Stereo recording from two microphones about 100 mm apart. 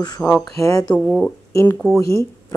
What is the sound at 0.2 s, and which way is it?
Speech, 30° left (ahead or behind).